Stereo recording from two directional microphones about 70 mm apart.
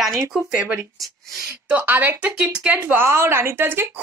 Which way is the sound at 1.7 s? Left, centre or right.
Right.